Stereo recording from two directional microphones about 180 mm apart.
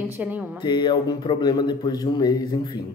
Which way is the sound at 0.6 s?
25° left (ahead or behind).